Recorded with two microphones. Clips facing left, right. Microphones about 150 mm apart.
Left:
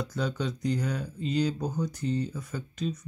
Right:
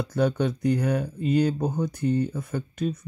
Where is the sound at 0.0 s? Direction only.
60° right (ahead or behind).